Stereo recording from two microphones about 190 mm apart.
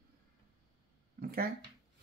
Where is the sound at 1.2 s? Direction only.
50° right (ahead or behind).